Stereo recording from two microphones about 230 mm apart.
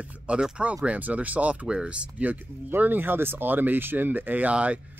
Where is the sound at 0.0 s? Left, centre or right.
Centre.